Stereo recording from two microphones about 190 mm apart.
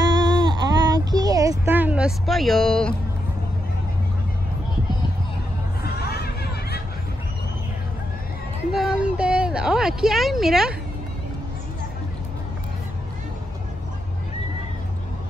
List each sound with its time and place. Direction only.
0.4 s baby cry: 20° right (ahead or behind); by 2.9 s 5° left (ahead or behind)
5.9 s a sound: 55° left (ahead or behind)
8.7 s a woman's voice: 5° right (ahead or behind)